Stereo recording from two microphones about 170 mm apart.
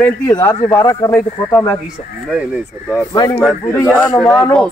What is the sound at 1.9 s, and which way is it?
Speech, 5° right (ahead or behind).